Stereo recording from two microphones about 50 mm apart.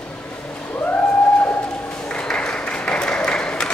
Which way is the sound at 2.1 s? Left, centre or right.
Centre.